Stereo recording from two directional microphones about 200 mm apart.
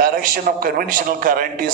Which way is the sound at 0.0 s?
45° right (ahead or behind).